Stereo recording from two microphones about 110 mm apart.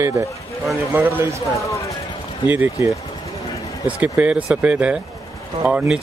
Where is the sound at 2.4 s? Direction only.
15° right (ahead or behind).